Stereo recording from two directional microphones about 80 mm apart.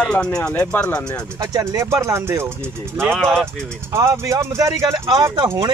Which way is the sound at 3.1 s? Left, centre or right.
Centre.